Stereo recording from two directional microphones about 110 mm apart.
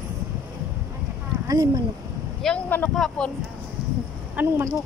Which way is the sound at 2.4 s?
5° left (ahead or behind).